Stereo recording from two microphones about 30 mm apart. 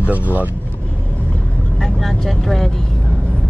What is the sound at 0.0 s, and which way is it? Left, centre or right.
Speech, right.